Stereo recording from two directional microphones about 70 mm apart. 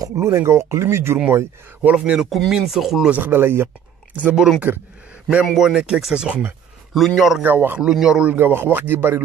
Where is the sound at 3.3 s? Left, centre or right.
Right.